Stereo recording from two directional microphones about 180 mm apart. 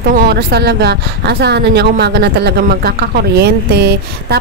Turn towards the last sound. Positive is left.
turn(degrees=-65)  # may be behind; listen again after turning